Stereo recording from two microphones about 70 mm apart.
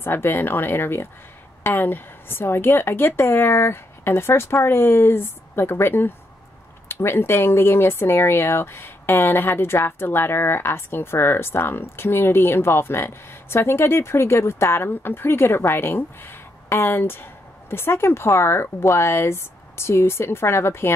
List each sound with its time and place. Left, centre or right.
0.0 s speech: left